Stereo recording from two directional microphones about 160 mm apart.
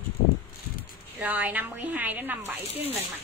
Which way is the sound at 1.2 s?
10° right (ahead or behind).